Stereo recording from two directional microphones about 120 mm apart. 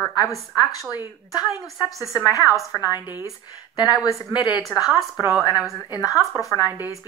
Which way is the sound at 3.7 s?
35° left (ahead or behind).